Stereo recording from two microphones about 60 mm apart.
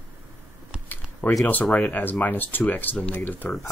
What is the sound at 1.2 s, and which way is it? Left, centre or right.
Speech, left.